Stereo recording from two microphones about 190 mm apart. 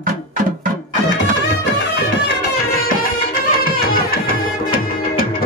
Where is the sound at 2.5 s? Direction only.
50° left (ahead or behind).